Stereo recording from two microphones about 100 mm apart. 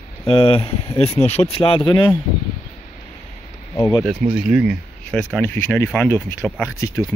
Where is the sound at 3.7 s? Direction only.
40° left (ahead or behind).